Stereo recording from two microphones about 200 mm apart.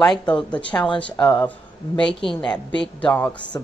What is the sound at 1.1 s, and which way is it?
Speech, 25° left (ahead or behind).